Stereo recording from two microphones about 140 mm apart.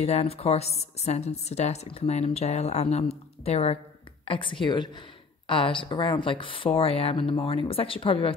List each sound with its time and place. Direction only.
0.0 s a woman's voice: 45° left (ahead or behind)